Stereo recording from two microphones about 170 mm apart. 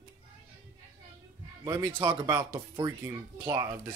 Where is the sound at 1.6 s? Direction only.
15° right (ahead or behind).